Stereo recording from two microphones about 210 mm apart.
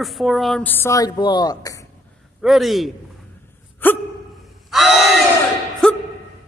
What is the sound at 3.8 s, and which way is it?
Gasp, 10° left (ahead or behind).